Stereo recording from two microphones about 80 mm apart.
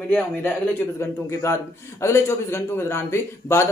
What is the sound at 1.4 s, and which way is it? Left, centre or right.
A man's voice, left.